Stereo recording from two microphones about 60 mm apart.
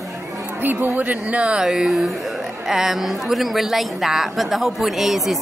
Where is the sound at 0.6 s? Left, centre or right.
Right.